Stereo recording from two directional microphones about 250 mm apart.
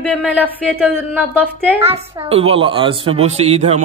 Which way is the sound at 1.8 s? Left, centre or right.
Right.